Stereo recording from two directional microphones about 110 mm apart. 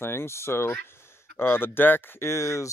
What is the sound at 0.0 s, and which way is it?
Speech, 20° left (ahead or behind).